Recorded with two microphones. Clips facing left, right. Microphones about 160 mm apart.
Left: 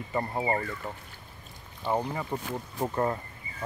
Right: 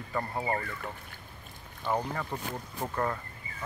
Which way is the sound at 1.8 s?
15° left (ahead or behind).